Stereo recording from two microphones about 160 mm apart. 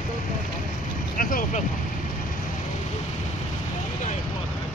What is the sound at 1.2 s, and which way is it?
Speech, 60° left (ahead or behind).